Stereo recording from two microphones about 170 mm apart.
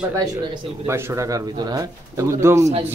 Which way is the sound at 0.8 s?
15° right (ahead or behind).